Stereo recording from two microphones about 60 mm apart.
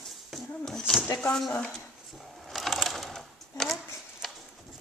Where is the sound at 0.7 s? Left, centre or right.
Centre.